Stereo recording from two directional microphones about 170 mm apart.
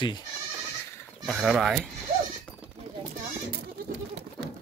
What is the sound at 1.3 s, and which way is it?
Speech, 5° right (ahead or behind).